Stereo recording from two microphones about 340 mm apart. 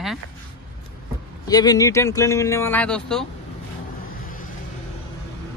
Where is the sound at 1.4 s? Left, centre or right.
Centre.